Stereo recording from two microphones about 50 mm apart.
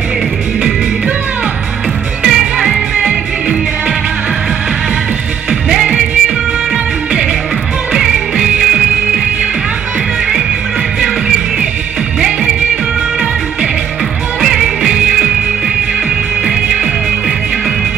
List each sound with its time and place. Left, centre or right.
2.2 s music: centre
5.5 s music: centre
7.9 s music: centre
14.4 s music: centre